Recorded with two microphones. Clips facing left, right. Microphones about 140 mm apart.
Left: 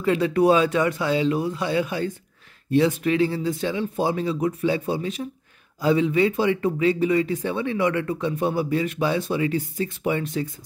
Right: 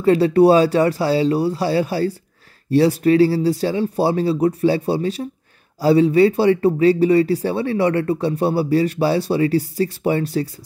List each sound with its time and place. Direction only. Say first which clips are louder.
0.0 s speech: right 6 dB; 35° right (ahead or behind)